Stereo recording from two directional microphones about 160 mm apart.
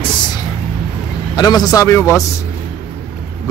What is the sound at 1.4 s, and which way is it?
Speech, 25° left (ahead or behind).